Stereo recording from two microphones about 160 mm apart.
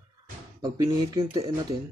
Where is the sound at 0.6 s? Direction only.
20° right (ahead or behind).